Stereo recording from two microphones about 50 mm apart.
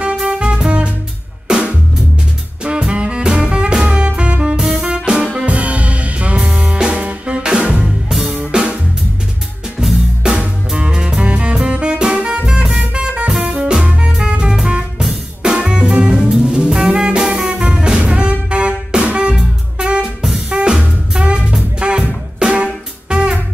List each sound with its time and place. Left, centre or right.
0.0 s music: right
1.5 s drum kit: right
2.6 s music: right
5.5 s music: right
7.8 s music: centre
8.5 s music: centre
9.8 s music: centre
14.7 s drum kit: right
15.4 s music: centre
19.8 s drum kit: centre
20.4 s music: centre